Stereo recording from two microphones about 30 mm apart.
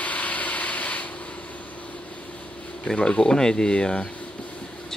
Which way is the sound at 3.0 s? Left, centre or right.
Left.